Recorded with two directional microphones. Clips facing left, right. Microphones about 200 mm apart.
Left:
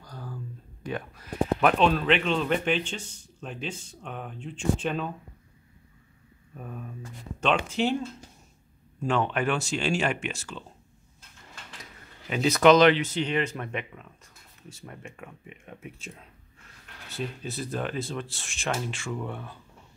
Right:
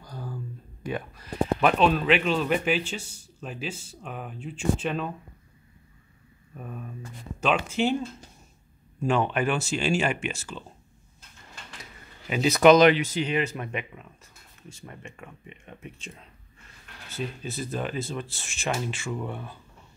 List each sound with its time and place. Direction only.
0.0 s a sound: 10° right (ahead or behind)
0.8 s a man's voice: centre (ahead or behind)
6.5 s a man's voice: centre (ahead or behind)
11.8 s a man's voice: 5° right (ahead or behind)